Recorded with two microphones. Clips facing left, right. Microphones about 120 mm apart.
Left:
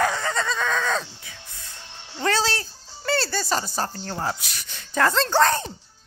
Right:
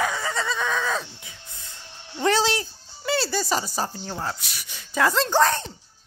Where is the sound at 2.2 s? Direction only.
20° right (ahead or behind).